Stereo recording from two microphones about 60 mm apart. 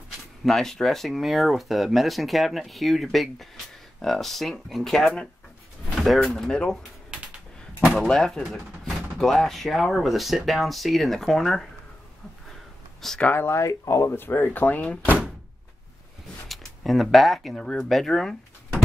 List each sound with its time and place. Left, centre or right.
0.5 s speech: centre
7.8 s speech: centre
8.1 s speech: centre
13.0 s speech: centre
13.5 s speech: left
14.1 s speech: left
16.4 s speech: centre